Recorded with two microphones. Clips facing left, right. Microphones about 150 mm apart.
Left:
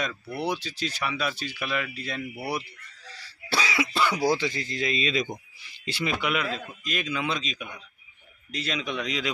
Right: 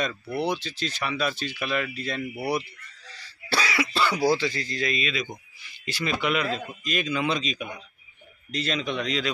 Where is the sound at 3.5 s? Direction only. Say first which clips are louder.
Right 1 dB; 15° left (ahead or behind).